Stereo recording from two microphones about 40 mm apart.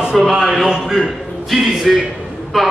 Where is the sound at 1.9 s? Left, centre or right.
Centre.